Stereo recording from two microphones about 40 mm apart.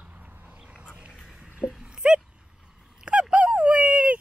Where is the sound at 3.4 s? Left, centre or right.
Right.